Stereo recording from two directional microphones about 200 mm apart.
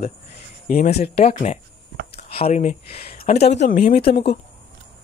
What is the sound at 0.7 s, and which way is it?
Speech, 30° left (ahead or behind).